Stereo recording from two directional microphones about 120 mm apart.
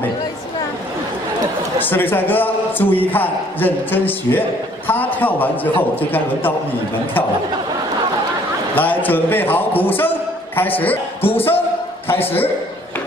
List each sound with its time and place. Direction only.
1.8 s a man's voice: 15° left (ahead or behind)
8.7 s a man's voice: 15° left (ahead or behind)